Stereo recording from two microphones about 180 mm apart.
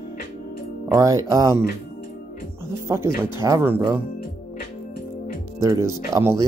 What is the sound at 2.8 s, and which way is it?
Speech, 15° right (ahead or behind).